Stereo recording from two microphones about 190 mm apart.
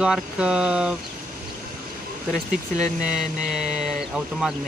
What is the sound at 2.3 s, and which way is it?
Speech, 5° right (ahead or behind).